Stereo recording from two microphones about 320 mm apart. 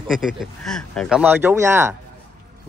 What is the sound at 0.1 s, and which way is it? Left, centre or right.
Speech, centre.